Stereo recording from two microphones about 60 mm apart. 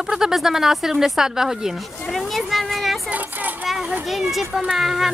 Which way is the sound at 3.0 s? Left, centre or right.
Right.